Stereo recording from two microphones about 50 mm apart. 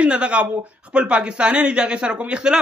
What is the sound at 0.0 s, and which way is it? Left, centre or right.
A man's voice, right.